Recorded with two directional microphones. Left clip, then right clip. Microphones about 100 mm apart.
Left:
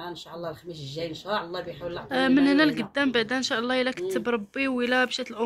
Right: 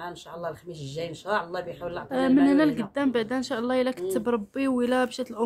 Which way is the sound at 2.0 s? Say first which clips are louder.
Even; 25° right (ahead or behind).